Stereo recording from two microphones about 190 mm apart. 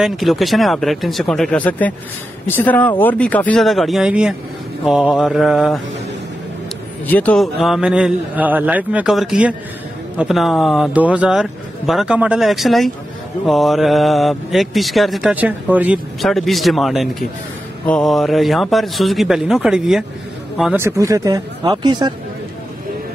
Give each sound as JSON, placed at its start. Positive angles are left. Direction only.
{"t": 0.0, "sound": "speech", "side_deg": 0}
{"t": 7.1, "sound": "speech", "side_deg": 10}
{"t": 20.7, "sound": "speech", "side_deg": -15}